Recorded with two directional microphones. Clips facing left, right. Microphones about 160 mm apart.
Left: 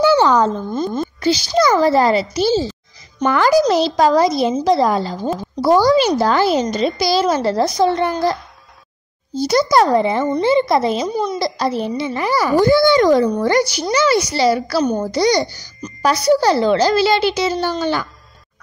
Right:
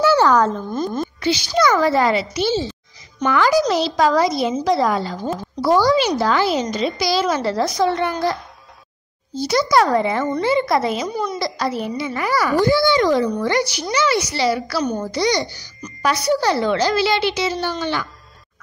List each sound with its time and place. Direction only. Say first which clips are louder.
0.0 s a sound: left 2 dB; 20° left (ahead or behind)
1.2 s a child's voice: left 3 dB; 40° left (ahead or behind)
4.2 s speech: left 3 dB; 35° left (ahead or behind)
9.4 s speech: left 3 dB; 40° left (ahead or behind)
9.8 s a woman's voice: left 3 dB; 25° left (ahead or behind)
12.5 s speech: left 5 dB; 45° left (ahead or behind)